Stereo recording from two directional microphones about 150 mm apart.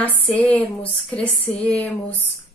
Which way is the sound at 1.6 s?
10° left (ahead or behind).